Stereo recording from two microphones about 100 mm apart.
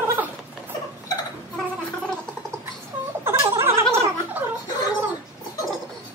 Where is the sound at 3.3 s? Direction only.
25° right (ahead or behind).